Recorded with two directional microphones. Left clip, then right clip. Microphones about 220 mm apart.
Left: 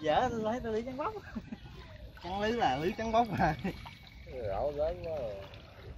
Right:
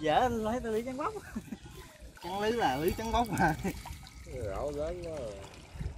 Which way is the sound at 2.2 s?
10° left (ahead or behind).